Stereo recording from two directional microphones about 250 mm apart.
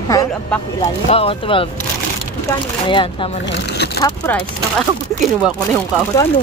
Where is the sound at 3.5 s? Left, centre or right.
Left.